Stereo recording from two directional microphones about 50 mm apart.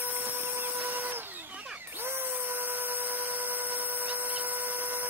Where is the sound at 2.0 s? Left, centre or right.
Right.